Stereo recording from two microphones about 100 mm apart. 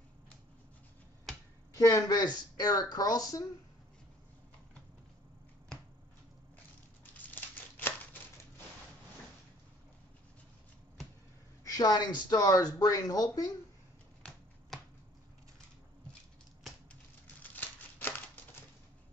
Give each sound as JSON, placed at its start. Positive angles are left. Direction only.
{"t": 1.8, "sound": "speech", "side_deg": 35}
{"t": 7.2, "sound": "crumpling", "side_deg": 20}
{"t": 11.6, "sound": "speech", "side_deg": 35}
{"t": 14.7, "sound": "finger snapping", "side_deg": 5}
{"t": 17.4, "sound": "crumpling", "side_deg": 15}